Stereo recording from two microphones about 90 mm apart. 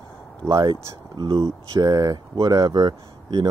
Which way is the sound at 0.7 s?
65° right (ahead or behind).